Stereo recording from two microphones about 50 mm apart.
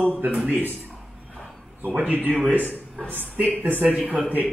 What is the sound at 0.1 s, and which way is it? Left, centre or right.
Speech, right.